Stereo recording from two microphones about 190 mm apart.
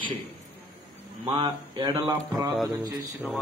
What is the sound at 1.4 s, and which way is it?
Speech, 25° right (ahead or behind).